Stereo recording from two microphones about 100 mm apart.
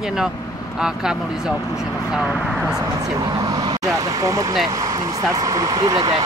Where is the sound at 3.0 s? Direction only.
40° right (ahead or behind).